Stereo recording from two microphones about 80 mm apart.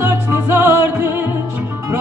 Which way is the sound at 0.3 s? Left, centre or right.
Right.